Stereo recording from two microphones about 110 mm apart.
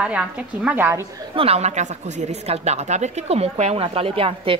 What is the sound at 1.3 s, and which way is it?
A woman's voice, 65° right (ahead or behind).